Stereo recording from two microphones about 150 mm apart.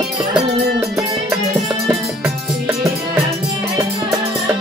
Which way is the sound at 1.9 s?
10° right (ahead or behind).